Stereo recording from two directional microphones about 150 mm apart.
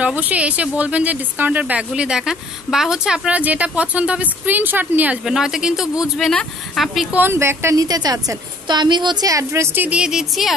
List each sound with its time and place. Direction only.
0.0 s speech: 10° right (ahead or behind)
7.2 s a woman's voice: 15° right (ahead or behind)